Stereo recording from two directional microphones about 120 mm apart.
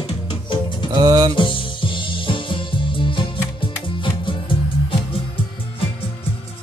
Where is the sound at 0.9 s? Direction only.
35° right (ahead or behind).